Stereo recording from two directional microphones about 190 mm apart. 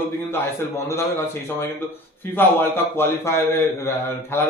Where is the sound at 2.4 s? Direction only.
10° left (ahead or behind).